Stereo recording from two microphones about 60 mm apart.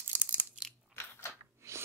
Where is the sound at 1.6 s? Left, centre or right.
Right.